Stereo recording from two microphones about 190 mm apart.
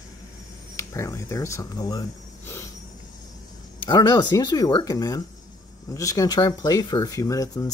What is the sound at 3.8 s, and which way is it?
Speech, 25° left (ahead or behind).